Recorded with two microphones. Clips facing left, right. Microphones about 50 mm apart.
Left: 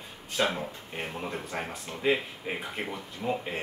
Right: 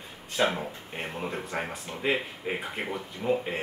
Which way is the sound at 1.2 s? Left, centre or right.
Centre.